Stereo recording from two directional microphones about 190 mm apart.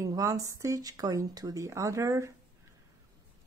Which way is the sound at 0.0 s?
15° right (ahead or behind).